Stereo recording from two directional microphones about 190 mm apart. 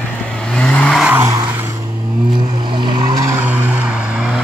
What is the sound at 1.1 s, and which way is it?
Vehicle, 15° right (ahead or behind).